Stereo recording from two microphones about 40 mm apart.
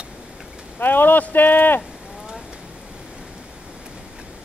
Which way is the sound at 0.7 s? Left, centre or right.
Left.